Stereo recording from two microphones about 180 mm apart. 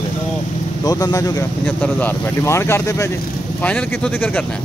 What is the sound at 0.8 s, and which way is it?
Speech, 20° left (ahead or behind).